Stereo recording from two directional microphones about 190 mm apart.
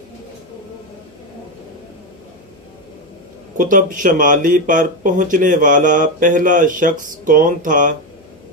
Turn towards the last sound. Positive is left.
turn(degrees=-45)  # may be behind; listen again after turning